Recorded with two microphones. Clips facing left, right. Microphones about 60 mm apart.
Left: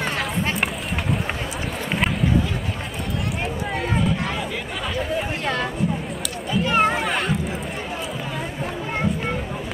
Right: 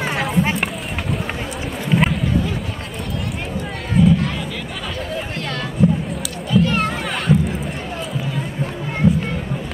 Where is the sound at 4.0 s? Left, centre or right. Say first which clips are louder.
Right 12 dB; centre.